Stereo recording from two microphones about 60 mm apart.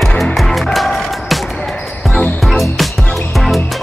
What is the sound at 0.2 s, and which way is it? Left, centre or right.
Music, centre.